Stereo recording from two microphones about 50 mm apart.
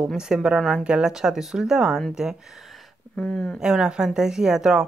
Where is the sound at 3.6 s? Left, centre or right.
Centre.